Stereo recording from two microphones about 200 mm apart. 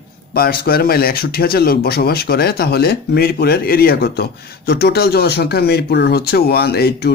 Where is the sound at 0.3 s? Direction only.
50° left (ahead or behind).